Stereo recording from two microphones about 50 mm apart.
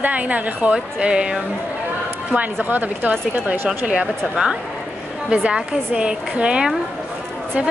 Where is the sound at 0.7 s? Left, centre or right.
Centre.